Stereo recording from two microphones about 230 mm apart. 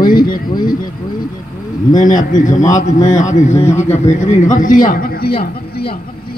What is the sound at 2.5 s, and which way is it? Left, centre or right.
Speech, centre.